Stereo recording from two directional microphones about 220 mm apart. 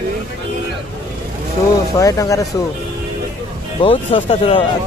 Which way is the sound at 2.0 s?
15° left (ahead or behind).